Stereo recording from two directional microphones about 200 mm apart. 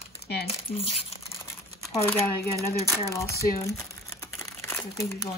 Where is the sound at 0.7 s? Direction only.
30° left (ahead or behind).